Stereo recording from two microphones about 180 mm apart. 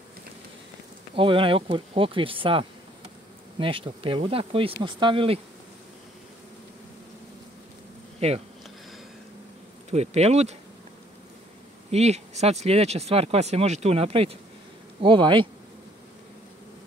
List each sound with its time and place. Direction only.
1.1 s speech: 30° right (ahead or behind)
8.2 s speech: 35° right (ahead or behind)
9.8 s speech: 35° right (ahead or behind)
11.9 s speech: 35° right (ahead or behind)